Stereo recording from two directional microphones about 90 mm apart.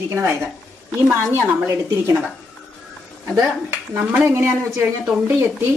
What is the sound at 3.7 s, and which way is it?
Speech, 25° right (ahead or behind).